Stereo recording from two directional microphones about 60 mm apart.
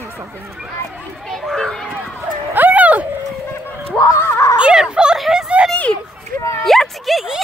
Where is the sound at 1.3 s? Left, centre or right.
Centre.